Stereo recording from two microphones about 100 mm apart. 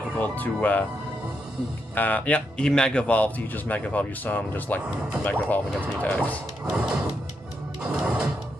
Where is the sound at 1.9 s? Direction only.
15° left (ahead or behind).